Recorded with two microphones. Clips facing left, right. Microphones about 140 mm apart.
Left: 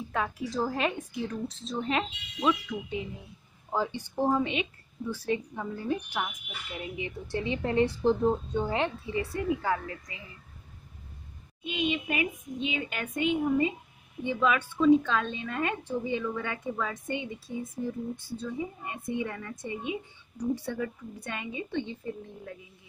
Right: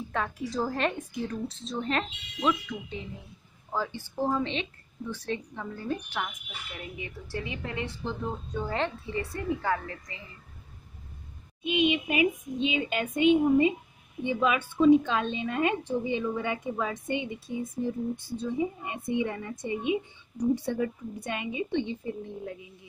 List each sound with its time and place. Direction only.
0.1 s a woman's voice: 5° left (ahead or behind); by 8.4 s 35° left (ahead or behind)
8.5 s a woman's voice: 15° left (ahead or behind)
11.6 s a woman's voice: 20° right (ahead or behind)